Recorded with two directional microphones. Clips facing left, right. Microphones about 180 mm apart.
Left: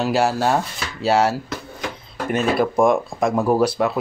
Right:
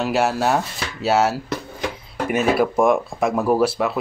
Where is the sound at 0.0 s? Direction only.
Centre (ahead or behind).